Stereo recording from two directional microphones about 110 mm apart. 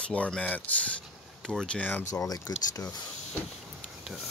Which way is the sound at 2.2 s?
35° left (ahead or behind).